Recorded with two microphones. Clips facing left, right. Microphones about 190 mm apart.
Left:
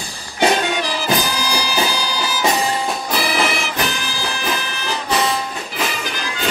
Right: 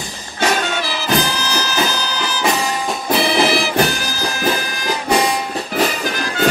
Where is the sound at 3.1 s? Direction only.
30° right (ahead or behind).